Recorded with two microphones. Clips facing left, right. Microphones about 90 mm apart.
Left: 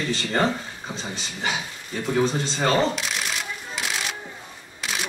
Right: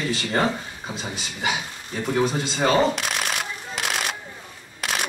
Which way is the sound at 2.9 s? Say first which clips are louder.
Right 2 dB; 60° right (ahead or behind).